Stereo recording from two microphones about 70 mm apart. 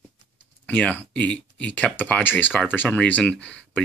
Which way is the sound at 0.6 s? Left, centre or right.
Left.